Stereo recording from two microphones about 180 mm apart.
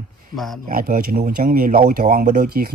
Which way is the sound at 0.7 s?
55° right (ahead or behind).